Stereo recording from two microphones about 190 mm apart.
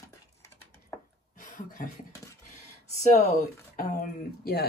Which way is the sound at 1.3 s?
45° left (ahead or behind).